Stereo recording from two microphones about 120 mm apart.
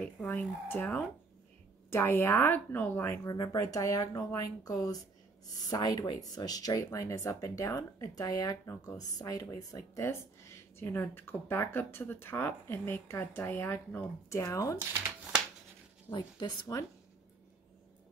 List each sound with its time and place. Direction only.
0.0 s speech: 10° left (ahead or behind); by 14.8 s 25° left (ahead or behind)
14.9 s speech: 20° right (ahead or behind)
16.1 s speech: 40° left (ahead or behind)